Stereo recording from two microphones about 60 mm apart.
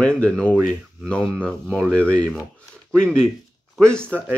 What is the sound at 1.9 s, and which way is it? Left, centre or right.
Speech, right.